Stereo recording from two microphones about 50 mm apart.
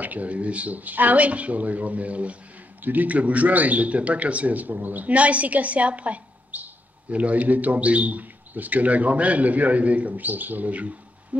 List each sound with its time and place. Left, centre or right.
0.0 s speech: right